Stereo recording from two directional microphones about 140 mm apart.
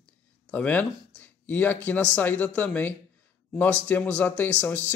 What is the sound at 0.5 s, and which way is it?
Speech, 10° left (ahead or behind).